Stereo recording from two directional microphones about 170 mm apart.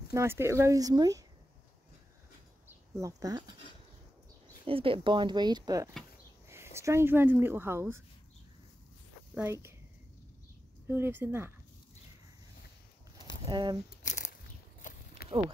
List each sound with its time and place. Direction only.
0.1 s speech: 15° right (ahead or behind)
3.0 s speech: 20° right (ahead or behind)
4.6 s speech: 30° right (ahead or behind); by 8.0 s 15° right (ahead or behind)
9.3 s speech: 10° right (ahead or behind)
10.9 s speech: 15° right (ahead or behind)
13.5 s speech: 25° right (ahead or behind)
14.0 s a sound: 45° left (ahead or behind)
14.8 s walk: 50° left (ahead or behind)